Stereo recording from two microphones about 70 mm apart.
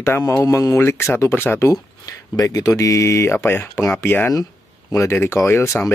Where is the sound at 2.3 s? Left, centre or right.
Left.